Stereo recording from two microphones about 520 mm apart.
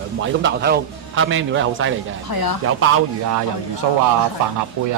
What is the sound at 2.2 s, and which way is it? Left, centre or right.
Speech, left.